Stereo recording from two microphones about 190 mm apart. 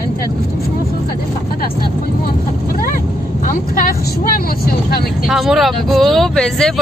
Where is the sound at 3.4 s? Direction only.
50° left (ahead or behind).